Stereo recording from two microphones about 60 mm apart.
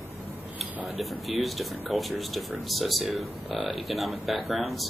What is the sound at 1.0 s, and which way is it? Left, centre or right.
Speech, centre.